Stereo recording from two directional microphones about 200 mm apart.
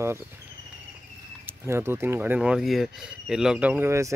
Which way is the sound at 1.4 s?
10° right (ahead or behind).